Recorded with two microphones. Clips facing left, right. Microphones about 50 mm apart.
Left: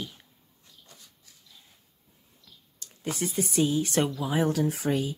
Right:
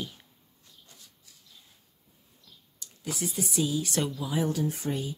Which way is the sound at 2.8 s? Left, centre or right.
Left.